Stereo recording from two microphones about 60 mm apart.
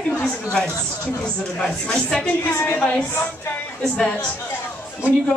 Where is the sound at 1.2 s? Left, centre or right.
Centre.